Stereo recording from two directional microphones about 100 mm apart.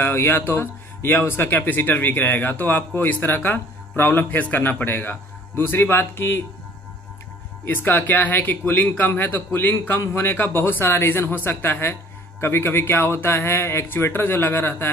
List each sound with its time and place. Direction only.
0.0 s speech: 25° left (ahead or behind)
7.6 s speech: 20° left (ahead or behind)